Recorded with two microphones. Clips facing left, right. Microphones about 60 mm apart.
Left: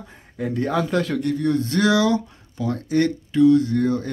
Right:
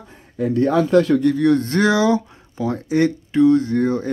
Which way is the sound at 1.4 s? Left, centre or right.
Right.